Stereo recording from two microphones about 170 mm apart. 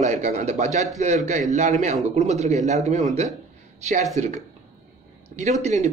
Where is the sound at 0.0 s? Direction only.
40° right (ahead or behind).